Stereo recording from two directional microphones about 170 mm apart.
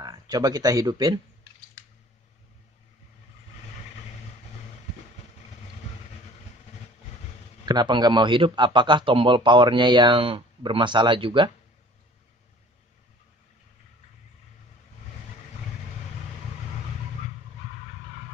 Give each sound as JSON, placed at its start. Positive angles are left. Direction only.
{"t": 0.0, "sound": "speech", "side_deg": -25}
{"t": 7.6, "sound": "a man's voice", "side_deg": -25}